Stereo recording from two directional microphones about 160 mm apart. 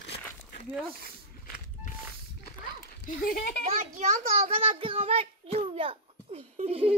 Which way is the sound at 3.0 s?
60° left (ahead or behind).